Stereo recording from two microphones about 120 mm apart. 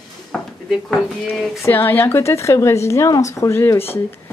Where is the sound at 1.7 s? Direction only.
15° left (ahead or behind).